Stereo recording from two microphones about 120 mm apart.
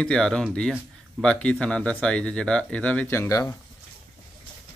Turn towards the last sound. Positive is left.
turn(degrees=20)  # may be behind; listen again after turning